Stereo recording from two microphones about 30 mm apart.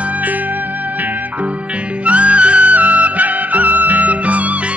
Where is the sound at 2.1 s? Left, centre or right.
Right.